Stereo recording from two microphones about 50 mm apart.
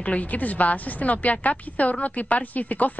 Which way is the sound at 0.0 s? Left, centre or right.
Left.